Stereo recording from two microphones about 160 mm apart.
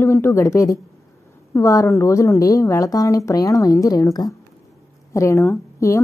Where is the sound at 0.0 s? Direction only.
15° left (ahead or behind).